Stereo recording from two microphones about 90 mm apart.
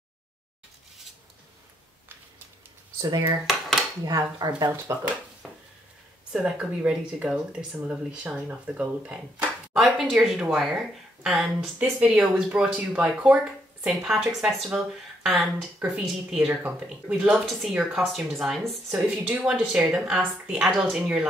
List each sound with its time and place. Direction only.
3.0 s speech: 45° right (ahead or behind)
3.4 s dishes: centre (ahead or behind)
4.0 s speech: 45° right (ahead or behind)
6.3 s speech: 10° right (ahead or behind)
11.8 s speech: 15° right (ahead or behind)
15.3 s speech: 15° right (ahead or behind)
20.6 s speech: centre (ahead or behind)